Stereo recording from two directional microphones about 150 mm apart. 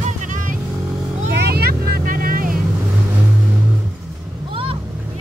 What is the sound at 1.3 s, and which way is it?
Vehicle, 90° right.